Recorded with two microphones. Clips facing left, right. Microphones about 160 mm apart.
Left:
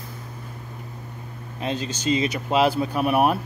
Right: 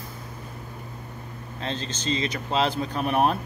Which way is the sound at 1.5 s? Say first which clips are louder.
Left 4 dB; 15° left (ahead or behind).